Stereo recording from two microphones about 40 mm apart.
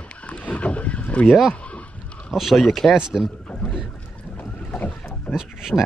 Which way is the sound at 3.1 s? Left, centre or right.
Left.